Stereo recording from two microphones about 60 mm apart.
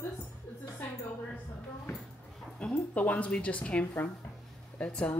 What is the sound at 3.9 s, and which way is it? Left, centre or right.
Speech, left.